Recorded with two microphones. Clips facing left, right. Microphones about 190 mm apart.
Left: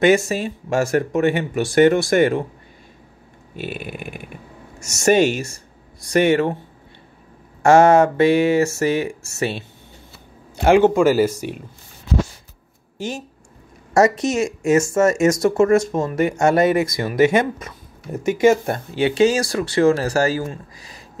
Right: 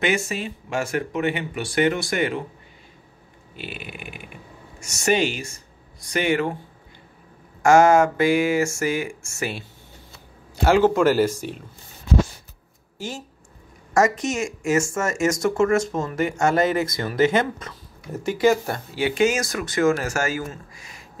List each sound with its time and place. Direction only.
0.0 s speech: 40° left (ahead or behind)
3.5 s speech: 45° left (ahead or behind)
7.6 s speech: 30° left (ahead or behind)
11.0 s speech: 10° left (ahead or behind)
12.9 s speech: 20° left (ahead or behind)
13.9 s speech: 35° left (ahead or behind)
15.1 s speech: 15° left (ahead or behind); by 21.0 s 35° left (ahead or behind)